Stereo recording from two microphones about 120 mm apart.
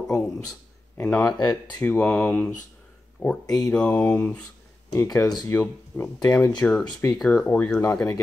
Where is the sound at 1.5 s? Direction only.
15° left (ahead or behind).